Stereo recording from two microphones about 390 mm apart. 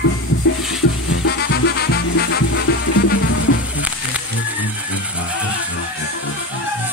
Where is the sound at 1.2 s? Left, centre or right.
Left.